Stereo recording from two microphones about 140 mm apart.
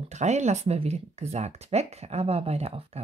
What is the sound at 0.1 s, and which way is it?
Speech, 55° right (ahead or behind).